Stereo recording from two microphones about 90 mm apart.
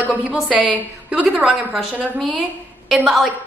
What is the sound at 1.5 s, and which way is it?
Speech, 5° right (ahead or behind).